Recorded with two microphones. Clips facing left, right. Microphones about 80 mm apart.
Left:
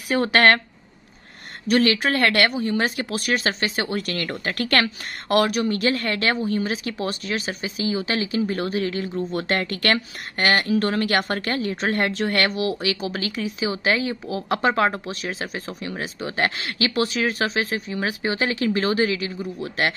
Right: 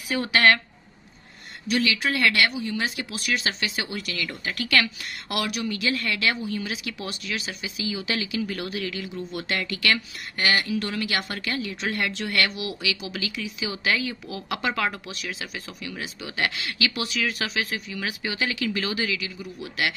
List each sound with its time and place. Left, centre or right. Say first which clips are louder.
0.1 s speech: left 3 dB; left
1.7 s a woman's voice: left 5 dB; left